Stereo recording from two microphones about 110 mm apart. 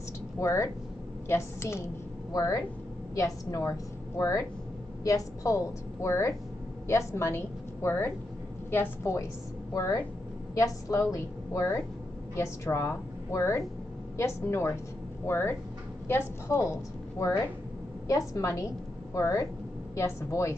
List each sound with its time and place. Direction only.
0.4 s a woman's voice: 25° left (ahead or behind)
18.0 s a woman's voice: 30° left (ahead or behind)